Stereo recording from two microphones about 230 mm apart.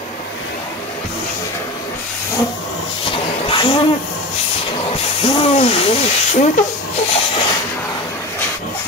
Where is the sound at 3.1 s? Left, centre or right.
Left.